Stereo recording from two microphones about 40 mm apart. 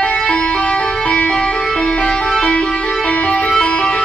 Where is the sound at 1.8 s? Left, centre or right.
Left.